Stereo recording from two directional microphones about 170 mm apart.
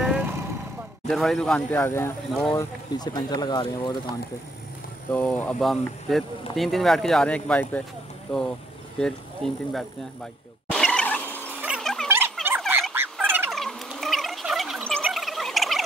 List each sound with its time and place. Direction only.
0.0 s vehicle: 5° right (ahead or behind)
1.0 s speech: centre (ahead or behind); by 3.9 s 25° left (ahead or behind)
5.1 s speech: 10° left (ahead or behind)
9.0 s speech: centre (ahead or behind)
10.7 s vehicle: 5° left (ahead or behind)
11.6 s rodents: centre (ahead or behind)
12.4 s frog: 10° right (ahead or behind)
13.5 s a sound: centre (ahead or behind)